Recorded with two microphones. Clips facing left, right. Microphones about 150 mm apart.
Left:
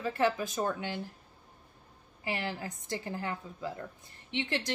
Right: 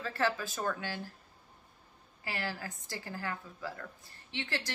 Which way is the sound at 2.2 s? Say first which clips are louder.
Left 3 dB; 20° left (ahead or behind).